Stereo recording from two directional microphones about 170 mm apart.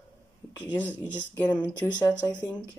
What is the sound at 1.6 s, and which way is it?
Speech, 10° right (ahead or behind).